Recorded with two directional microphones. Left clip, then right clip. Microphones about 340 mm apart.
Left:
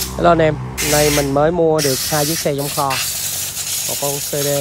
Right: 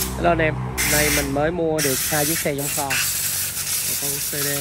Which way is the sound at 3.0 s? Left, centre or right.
Centre.